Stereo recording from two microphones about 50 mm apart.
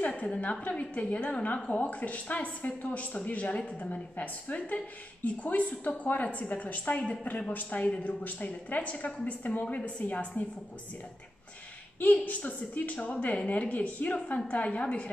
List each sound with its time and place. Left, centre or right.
0.0 s a woman's voice: left
12.0 s a woman's voice: left